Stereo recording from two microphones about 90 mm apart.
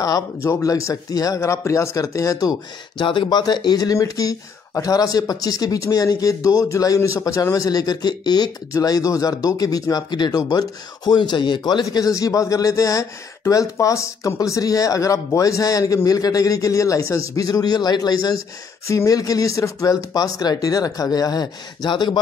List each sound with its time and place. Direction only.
0.0 s speech: 40° left (ahead or behind)
3.0 s speech: 60° left (ahead or behind)